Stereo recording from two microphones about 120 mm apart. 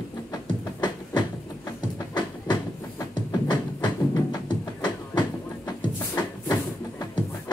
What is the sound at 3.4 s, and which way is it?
Music, 35° left (ahead or behind).